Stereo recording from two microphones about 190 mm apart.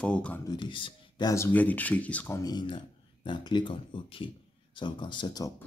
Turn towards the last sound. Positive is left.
turn(degrees=25)  # may be behind; listen again after turning